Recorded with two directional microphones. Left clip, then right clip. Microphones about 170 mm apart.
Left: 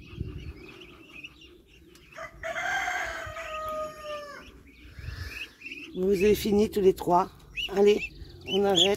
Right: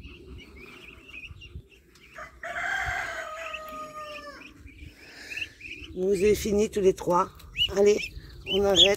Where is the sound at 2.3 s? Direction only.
30° right (ahead or behind).